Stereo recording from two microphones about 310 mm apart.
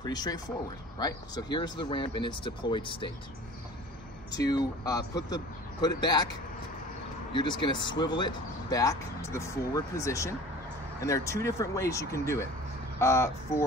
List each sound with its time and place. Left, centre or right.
0.0 s speech: centre
4.3 s speech: centre
7.3 s speech: centre